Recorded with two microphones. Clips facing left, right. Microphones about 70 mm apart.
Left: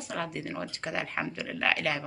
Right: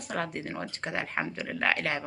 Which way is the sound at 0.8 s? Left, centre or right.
Right.